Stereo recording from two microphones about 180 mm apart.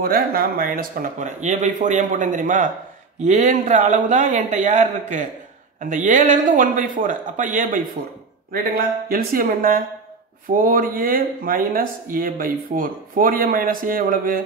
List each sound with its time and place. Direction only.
0.0 s speech: 55° right (ahead or behind)